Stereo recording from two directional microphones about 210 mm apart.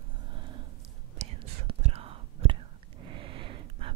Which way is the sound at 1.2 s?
30° right (ahead or behind).